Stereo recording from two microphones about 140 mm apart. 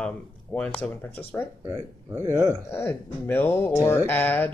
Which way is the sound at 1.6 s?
20° right (ahead or behind).